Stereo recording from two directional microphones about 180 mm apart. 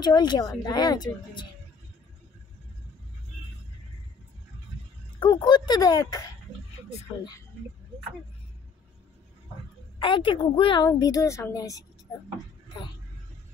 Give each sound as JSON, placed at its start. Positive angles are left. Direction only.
{"t": 0.0, "sound": "a woman's voice", "side_deg": 25}
{"t": 5.2, "sound": "a woman's voice", "side_deg": 25}
{"t": 9.9, "sound": "a woman's voice", "side_deg": 25}